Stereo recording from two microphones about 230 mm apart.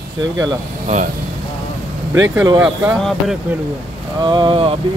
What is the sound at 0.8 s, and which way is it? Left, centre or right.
Speech, right.